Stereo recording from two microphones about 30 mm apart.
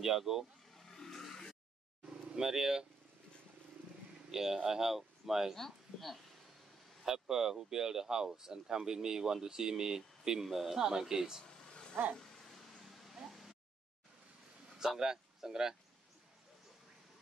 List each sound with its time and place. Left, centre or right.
0.0 s speech: centre
0.7 s vehicle: centre
2.3 s speech: centre
4.3 s speech: centre
5.6 s speech: centre
7.1 s speech: right
11.4 s vehicle: left
12.2 s a sound: centre
12.8 s a sound: centre
14.8 s speech: centre